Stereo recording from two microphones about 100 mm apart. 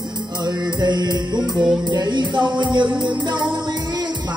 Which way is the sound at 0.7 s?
45° right (ahead or behind).